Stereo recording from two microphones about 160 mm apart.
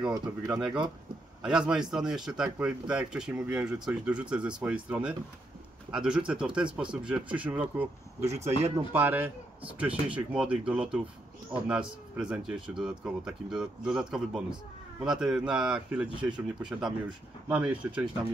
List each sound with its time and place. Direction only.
0.2 s speech: 5° right (ahead or behind)